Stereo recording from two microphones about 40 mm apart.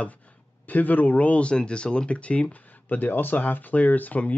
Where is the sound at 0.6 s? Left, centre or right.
Left.